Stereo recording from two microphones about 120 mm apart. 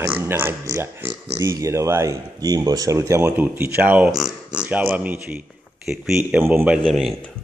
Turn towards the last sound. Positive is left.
turn(degrees=0)  # may be behind; listen again after turning